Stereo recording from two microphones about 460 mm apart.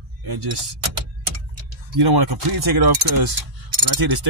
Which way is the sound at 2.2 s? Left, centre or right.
Right.